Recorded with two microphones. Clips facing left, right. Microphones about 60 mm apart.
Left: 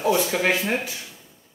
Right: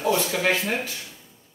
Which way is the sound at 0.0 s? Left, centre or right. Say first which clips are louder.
Left 2 dB; centre.